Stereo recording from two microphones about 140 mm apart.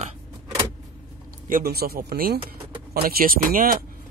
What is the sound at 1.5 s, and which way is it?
Speech, 85° right.